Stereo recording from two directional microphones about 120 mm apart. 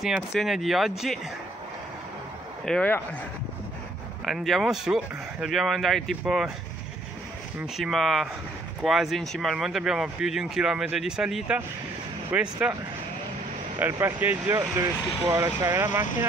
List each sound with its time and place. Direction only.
0.0 s speech: centre (ahead or behind)
2.6 s speech: 5° left (ahead or behind)
4.3 s speech: centre (ahead or behind)
7.5 s speech: 5° right (ahead or behind)
13.9 s speech: 15° right (ahead or behind)